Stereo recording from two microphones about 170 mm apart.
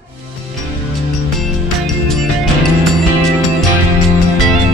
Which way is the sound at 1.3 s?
Centre (ahead or behind).